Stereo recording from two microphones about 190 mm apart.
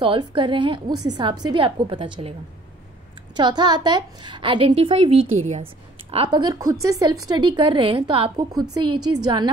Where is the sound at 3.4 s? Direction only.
20° right (ahead or behind).